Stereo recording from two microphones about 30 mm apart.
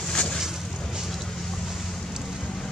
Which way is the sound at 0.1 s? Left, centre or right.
Left.